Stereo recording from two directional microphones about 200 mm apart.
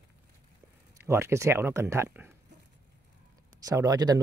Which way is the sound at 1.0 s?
15° right (ahead or behind).